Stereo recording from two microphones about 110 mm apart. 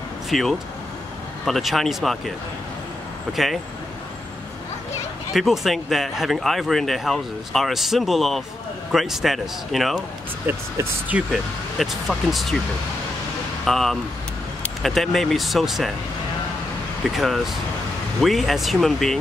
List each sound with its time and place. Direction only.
0.3 s speech: centre (ahead or behind)
5.3 s speech: centre (ahead or behind)
10.4 s speech: 15° right (ahead or behind)
11.8 s speech: centre (ahead or behind)
13.7 s speech: centre (ahead or behind)
17.2 s speech: centre (ahead or behind)